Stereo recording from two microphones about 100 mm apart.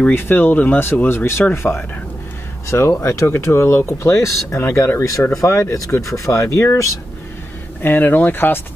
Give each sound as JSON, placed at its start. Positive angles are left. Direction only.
{"t": 0.1, "sound": "speech", "side_deg": 20}